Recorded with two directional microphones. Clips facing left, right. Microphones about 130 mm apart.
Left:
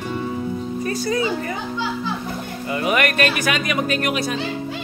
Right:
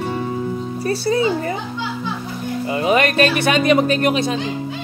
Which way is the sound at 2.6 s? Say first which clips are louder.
Right 3 dB; 25° right (ahead or behind).